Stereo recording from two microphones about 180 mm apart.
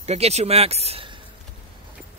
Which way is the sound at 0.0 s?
35° right (ahead or behind).